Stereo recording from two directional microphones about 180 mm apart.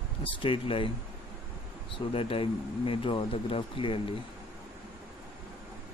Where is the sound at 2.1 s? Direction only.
30° left (ahead or behind).